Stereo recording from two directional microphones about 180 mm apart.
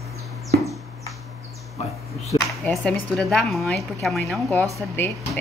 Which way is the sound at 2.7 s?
5° left (ahead or behind).